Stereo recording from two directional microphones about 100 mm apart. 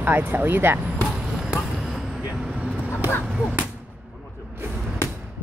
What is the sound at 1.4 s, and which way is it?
Vehicle, centre (ahead or behind).